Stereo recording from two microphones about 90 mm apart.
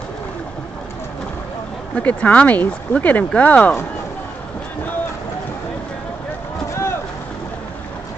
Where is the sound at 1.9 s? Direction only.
15° left (ahead or behind).